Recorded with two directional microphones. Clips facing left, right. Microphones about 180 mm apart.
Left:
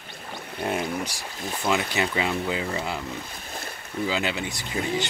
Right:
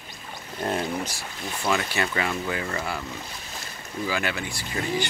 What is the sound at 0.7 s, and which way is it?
Speech, 10° left (ahead or behind).